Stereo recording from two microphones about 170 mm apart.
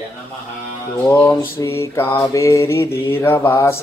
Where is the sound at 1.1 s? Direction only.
15° left (ahead or behind).